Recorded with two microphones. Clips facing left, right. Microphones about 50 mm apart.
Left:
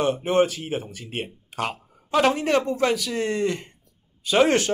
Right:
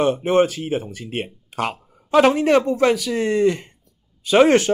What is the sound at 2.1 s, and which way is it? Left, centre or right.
Speech, right.